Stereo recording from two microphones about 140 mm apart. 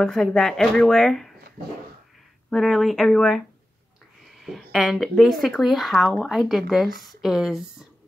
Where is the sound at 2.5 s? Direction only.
Centre (ahead or behind).